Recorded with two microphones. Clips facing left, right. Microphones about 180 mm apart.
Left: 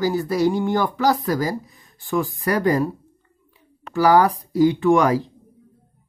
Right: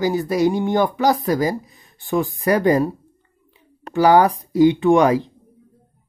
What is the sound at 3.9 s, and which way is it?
Speech, 25° right (ahead or behind).